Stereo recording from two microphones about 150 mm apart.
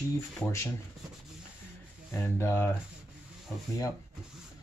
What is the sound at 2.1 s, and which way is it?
Speech, 15° left (ahead or behind).